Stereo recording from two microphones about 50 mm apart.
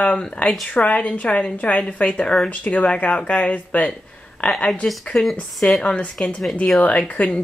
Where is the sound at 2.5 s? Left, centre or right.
Left.